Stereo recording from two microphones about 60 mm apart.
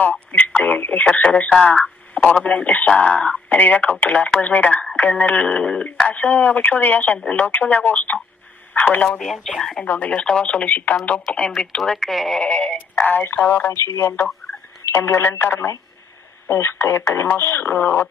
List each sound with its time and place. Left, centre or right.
0.0 s speech: left
9.2 s speech: centre
9.8 s speech: left
11.5 s speech: centre
12.4 s synthetic singing: centre
13.0 s speech: left